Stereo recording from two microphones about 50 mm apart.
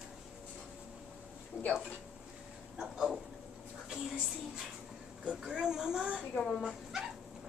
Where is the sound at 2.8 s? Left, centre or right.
Centre.